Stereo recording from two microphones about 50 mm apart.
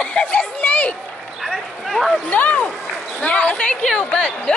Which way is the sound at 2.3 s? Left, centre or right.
Left.